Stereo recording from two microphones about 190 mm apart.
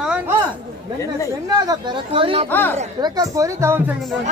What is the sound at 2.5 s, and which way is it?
Speech, 10° left (ahead or behind).